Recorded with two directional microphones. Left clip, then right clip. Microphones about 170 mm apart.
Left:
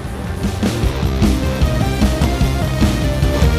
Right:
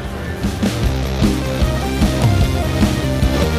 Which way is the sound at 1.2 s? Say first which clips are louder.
Even; centre (ahead or behind).